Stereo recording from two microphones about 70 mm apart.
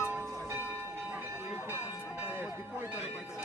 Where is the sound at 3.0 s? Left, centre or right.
Centre.